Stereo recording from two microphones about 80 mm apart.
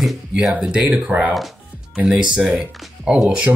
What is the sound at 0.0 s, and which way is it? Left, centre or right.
Speech, centre.